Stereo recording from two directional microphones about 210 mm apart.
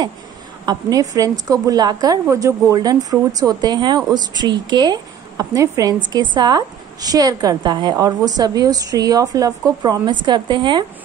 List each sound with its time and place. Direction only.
0.7 s a woman's voice: 15° right (ahead or behind)